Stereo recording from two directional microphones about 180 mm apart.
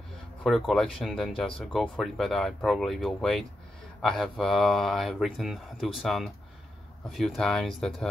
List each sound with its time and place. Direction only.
0.4 s speech: centre (ahead or behind)